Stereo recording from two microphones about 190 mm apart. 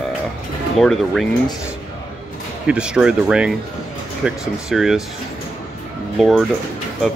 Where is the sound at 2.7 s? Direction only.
5° right (ahead or behind).